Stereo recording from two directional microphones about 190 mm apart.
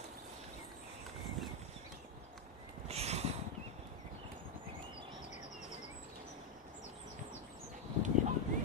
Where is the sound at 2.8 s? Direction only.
35° right (ahead or behind).